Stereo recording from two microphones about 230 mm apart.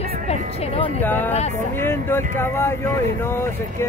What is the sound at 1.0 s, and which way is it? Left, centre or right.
Speech, centre.